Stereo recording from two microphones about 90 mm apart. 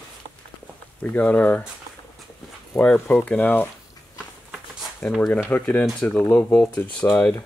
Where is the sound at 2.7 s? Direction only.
10° left (ahead or behind).